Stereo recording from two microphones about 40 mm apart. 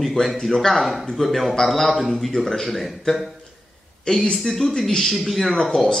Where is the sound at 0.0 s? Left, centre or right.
Centre.